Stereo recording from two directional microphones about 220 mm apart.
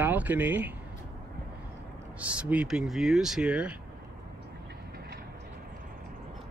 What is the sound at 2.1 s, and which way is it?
Speech, 5° right (ahead or behind).